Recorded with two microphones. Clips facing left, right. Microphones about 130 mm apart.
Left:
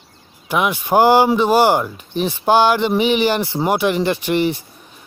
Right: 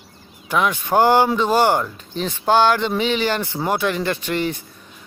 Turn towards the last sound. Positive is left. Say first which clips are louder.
# left 5 dB
turn(degrees=15)  # may be behind; listen again after turning